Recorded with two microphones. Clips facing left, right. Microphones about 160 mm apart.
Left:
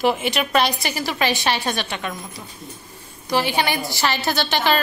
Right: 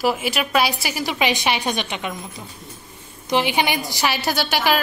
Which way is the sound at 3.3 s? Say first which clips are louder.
Right 1 dB; 15° right (ahead or behind).